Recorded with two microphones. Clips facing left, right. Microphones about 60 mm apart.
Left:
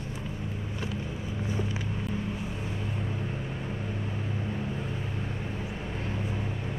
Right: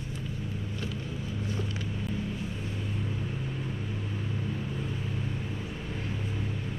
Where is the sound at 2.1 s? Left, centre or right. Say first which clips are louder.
Even; centre.